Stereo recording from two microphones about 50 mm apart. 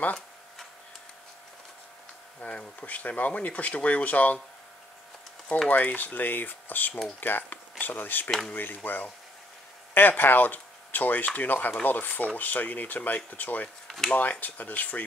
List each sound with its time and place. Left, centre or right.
2.4 s speech: left
5.7 s speech: left
13.8 s speech: centre
14.4 s speech: left